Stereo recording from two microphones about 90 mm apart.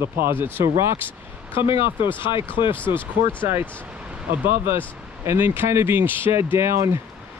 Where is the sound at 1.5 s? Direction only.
70° left (ahead or behind).